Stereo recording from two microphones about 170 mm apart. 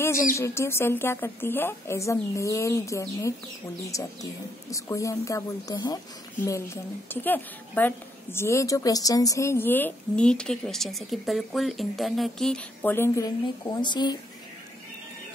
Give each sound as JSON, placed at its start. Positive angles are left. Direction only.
{"t": 0.3, "sound": "a woman's voice", "side_deg": 15}